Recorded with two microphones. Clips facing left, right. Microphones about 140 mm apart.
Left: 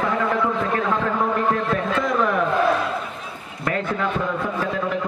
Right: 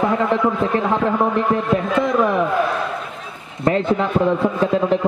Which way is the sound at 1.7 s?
20° right (ahead or behind).